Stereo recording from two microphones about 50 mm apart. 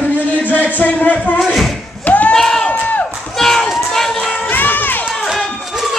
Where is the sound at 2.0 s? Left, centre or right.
Left.